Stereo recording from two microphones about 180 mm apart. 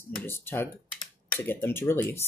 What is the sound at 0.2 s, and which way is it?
Speech, 10° left (ahead or behind).